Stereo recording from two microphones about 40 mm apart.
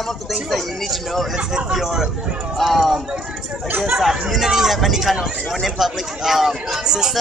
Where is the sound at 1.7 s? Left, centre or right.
Centre.